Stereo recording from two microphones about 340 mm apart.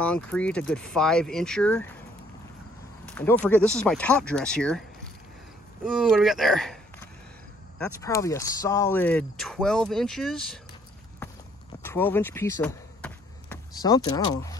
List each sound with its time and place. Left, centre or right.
0.0 s speech: centre
3.1 s a sound: centre
3.4 s speech: centre
5.9 s speech: centre
11.8 s basketball bounce: centre
13.8 s speech: centre